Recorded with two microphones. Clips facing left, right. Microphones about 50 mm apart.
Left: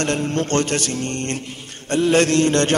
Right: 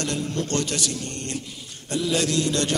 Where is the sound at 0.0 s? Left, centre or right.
Left.